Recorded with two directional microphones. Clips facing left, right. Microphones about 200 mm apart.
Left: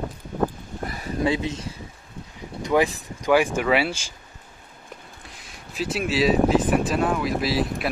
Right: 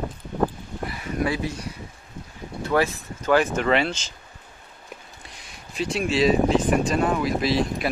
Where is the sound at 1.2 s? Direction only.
20° left (ahead or behind).